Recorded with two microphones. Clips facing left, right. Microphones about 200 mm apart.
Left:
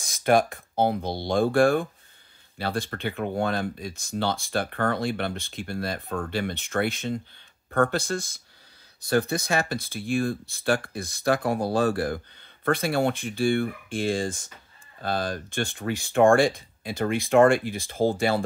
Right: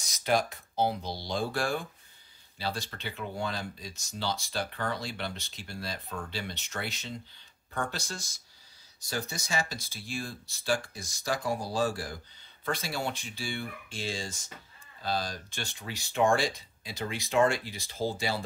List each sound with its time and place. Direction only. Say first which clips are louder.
0.0 s speech: left 7 dB; 55° left (ahead or behind)